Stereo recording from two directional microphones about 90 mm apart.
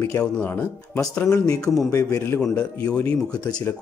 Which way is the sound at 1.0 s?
10° left (ahead or behind).